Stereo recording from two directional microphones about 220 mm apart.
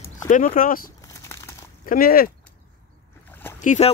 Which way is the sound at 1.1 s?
10° left (ahead or behind).